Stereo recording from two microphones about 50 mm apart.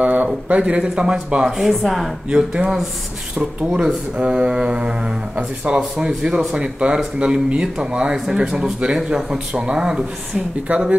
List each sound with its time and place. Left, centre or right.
0.0 s a sound: right
0.5 s speech: right
1.4 s speech: centre
2.2 s speech: right
10.7 s speech: right